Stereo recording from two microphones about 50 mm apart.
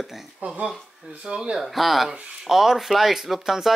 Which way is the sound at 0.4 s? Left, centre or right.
Right.